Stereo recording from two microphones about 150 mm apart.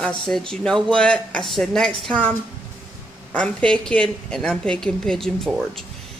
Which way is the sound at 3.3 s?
5° left (ahead or behind).